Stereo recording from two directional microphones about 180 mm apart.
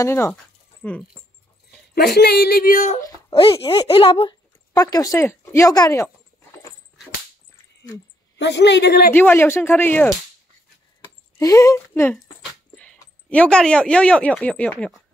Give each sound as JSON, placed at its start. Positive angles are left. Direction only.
{"t": 0.0, "sound": "speech", "side_deg": 15}
{"t": 2.0, "sound": "speech", "side_deg": 65}
{"t": 3.3, "sound": "speech", "side_deg": 30}
{"t": 8.4, "sound": "a man's voice", "side_deg": 75}
{"t": 9.1, "sound": "speech", "side_deg": 10}
{"t": 11.3, "sound": "speech", "side_deg": 20}